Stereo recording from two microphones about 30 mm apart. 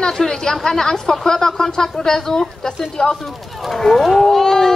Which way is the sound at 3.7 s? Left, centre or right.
Centre.